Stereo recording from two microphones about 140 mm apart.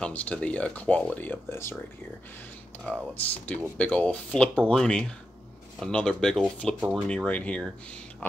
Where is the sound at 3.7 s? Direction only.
10° left (ahead or behind).